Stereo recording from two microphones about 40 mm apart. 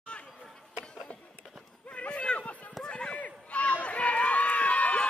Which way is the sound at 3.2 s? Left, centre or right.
Left.